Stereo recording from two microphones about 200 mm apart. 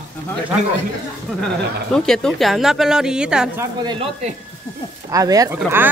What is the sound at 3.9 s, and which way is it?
Speech, 25° right (ahead or behind).